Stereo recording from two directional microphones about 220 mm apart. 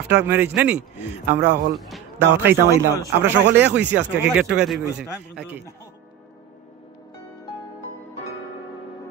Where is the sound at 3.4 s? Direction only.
50° right (ahead or behind).